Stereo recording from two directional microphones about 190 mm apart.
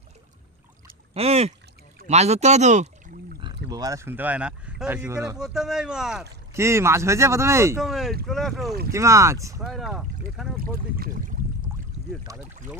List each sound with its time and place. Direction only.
1.1 s speech: 35° right (ahead or behind)
3.3 s boat: 25° right (ahead or behind)
3.7 s speech: 20° right (ahead or behind)
5.4 s speech: 5° right (ahead or behind)
6.5 s speech: 15° right (ahead or behind)
7.8 s speech: centre (ahead or behind)
8.9 s speech: 15° right (ahead or behind)
9.6 s speech: centre (ahead or behind)
10.6 s speech: 45° right (ahead or behind)
12.3 s speech: 15° right (ahead or behind)